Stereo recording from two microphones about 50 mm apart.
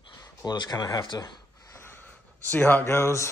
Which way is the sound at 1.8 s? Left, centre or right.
Left.